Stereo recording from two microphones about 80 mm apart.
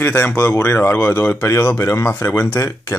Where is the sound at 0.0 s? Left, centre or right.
Left.